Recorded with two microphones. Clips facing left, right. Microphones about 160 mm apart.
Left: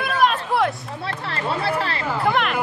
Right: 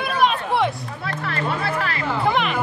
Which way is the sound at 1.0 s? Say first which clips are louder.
Right 1 dB; 30° left (ahead or behind).